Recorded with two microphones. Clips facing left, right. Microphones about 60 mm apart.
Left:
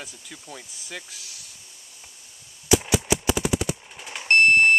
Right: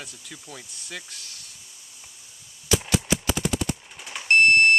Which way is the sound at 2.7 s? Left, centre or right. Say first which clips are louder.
Left 3 dB; centre.